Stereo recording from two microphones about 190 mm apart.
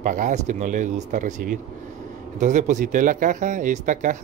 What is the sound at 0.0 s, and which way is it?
Speech, 45° right (ahead or behind).